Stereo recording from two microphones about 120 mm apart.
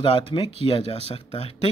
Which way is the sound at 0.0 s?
45° left (ahead or behind).